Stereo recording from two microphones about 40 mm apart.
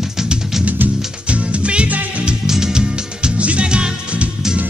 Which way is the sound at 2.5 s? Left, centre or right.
Centre.